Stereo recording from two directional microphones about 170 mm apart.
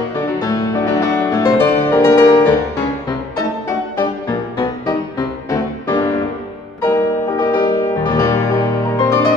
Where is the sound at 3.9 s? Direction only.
25° left (ahead or behind).